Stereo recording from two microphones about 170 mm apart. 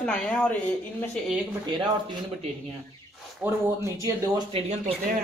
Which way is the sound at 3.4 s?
15° right (ahead or behind).